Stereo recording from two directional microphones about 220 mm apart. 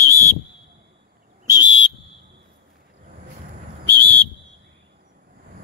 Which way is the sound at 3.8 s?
10° left (ahead or behind).